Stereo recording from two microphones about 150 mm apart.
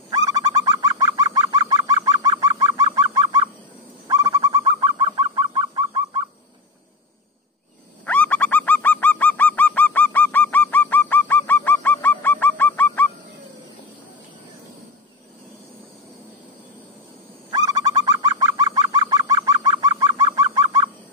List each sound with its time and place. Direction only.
0.1 s bird: 25° right (ahead or behind)
8.0 s bird: 10° left (ahead or behind)
17.5 s bird: 25° right (ahead or behind)